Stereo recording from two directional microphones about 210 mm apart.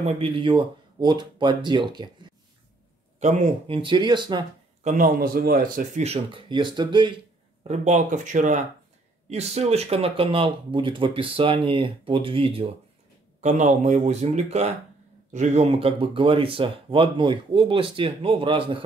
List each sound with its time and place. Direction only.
0.0 s speech: 25° right (ahead or behind)
3.2 s speech: 35° right (ahead or behind)
4.8 s speech: 40° right (ahead or behind); by 7.2 s 20° right (ahead or behind)
7.6 s speech: 35° right (ahead or behind)